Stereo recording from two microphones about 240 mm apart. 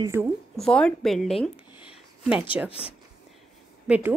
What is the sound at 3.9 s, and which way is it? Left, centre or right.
Speech, centre.